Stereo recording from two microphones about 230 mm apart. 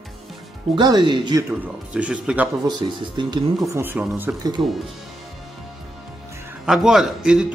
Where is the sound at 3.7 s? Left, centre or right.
Centre.